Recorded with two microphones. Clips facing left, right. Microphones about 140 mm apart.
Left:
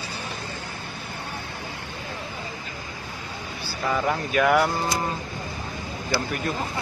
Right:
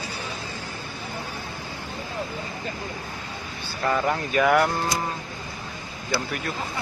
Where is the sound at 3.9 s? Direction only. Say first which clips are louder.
Right 1 dB; centre (ahead or behind).